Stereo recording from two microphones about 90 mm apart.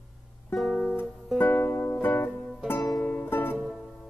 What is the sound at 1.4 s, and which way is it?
Music, 20° left (ahead or behind).